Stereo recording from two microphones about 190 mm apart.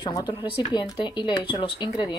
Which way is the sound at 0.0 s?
20° left (ahead or behind).